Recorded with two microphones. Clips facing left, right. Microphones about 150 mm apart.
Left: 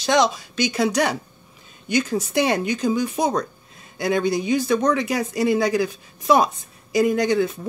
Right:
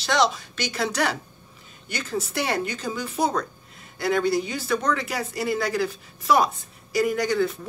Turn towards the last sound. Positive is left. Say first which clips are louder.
# left 3 dB
turn(degrees=20)  # may be behind; listen again after turning